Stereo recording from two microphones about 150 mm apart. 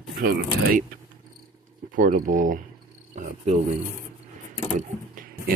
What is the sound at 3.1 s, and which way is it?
Cricket, 55° right (ahead or behind).